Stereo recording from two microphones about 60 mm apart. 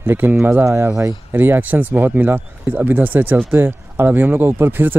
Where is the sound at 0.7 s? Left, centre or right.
Right.